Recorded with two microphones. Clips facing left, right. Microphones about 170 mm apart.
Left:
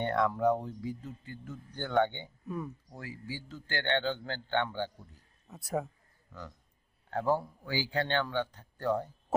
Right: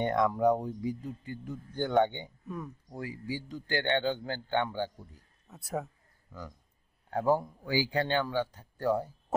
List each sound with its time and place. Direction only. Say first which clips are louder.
0.0 s a man's voice: right 2 dB; 15° right (ahead or behind)
2.4 s speech: left 3 dB; 5° left (ahead or behind)
2.9 s a man's voice: right 5 dB; 15° right (ahead or behind)
5.5 s a man's voice: left 2 dB; centre (ahead or behind)